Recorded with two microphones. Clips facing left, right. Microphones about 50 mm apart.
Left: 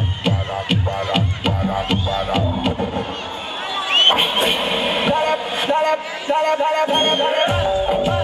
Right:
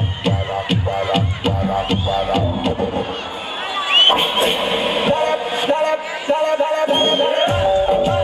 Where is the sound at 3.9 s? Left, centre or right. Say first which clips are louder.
Right 2 dB; centre.